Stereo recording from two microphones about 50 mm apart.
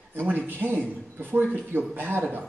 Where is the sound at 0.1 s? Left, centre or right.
Right.